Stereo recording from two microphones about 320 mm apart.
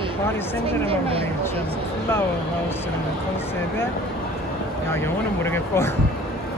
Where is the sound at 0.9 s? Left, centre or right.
Centre.